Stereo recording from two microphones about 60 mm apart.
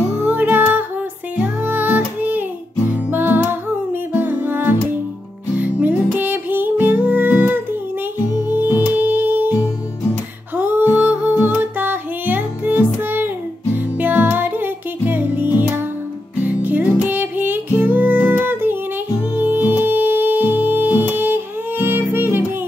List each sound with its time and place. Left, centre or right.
0.2 s music: right
10.5 s music: right